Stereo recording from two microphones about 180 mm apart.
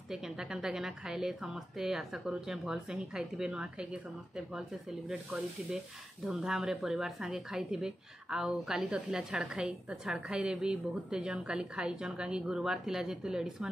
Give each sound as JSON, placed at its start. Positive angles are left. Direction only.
{"t": 0.1, "sound": "a woman's voice", "side_deg": -5}